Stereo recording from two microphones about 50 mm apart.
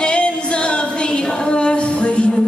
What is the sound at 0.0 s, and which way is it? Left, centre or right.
Female singing, centre.